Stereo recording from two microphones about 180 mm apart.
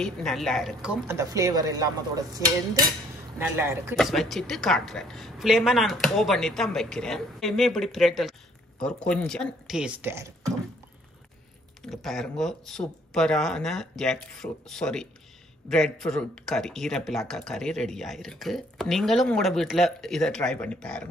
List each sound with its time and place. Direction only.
0.0 s speech: centre (ahead or behind)
1.0 s dishes: 15° right (ahead or behind)
3.3 s speech: 10° right (ahead or behind)
3.9 s speech: centre (ahead or behind)
10.0 s speech: 15° right (ahead or behind)
11.8 s speech: centre (ahead or behind)